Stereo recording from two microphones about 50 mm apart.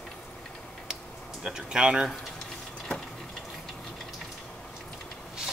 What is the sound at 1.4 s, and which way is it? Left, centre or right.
Speech, centre.